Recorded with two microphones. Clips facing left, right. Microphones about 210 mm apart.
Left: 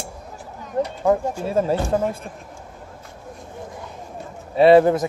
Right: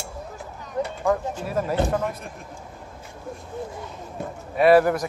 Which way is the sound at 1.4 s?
25° left (ahead or behind).